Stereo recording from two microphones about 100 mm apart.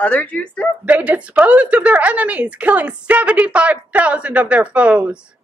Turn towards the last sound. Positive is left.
turn(degrees=-15)  # may be behind; listen again after turning